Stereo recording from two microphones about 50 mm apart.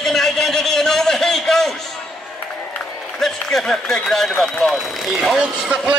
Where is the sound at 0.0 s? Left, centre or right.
Centre.